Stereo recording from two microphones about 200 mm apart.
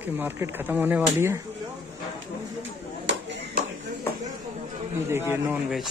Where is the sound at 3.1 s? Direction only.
60° right (ahead or behind).